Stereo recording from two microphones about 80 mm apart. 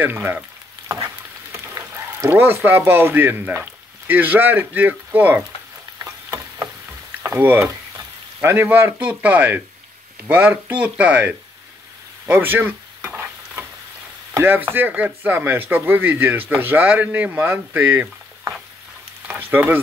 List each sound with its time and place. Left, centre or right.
0.0 s speech: right
5.9 s a sound: right
7.2 s speech: right
12.3 s stir: right
14.3 s speech: right
19.2 s frying: right